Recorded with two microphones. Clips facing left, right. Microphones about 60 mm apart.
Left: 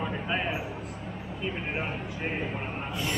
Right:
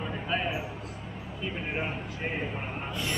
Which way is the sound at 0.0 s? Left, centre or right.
Centre.